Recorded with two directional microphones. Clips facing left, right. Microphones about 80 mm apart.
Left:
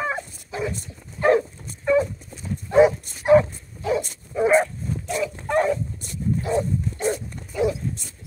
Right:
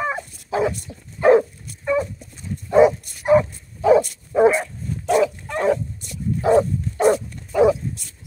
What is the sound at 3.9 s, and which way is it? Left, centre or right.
Bow-wow, right.